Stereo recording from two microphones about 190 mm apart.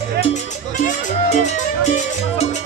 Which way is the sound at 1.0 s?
40° left (ahead or behind).